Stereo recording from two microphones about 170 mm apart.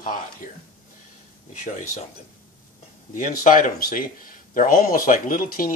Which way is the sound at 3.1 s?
50° left (ahead or behind).